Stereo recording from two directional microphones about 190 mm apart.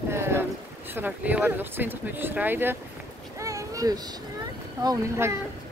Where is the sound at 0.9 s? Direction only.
10° right (ahead or behind).